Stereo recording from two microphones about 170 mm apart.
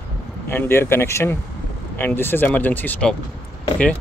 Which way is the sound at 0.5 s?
15° left (ahead or behind).